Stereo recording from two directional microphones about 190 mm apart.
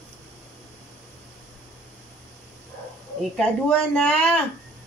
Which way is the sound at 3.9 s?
5° left (ahead or behind).